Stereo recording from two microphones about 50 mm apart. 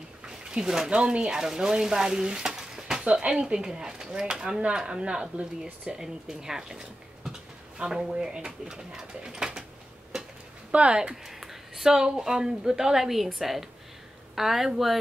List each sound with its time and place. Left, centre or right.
0.3 s speech: centre
3.1 s speech: right
10.1 s a sound: centre
10.7 s speech: right
11.2 s a woman's voice: centre